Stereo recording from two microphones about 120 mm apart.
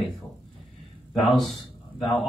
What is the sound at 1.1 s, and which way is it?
Speech, centre (ahead or behind).